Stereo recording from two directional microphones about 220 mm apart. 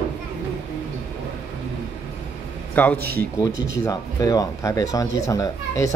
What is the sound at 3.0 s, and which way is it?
Speech, 45° right (ahead or behind).